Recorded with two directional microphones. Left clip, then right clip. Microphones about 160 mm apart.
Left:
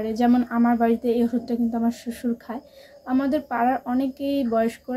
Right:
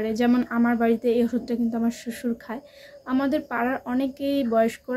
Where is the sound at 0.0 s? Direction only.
25° right (ahead or behind).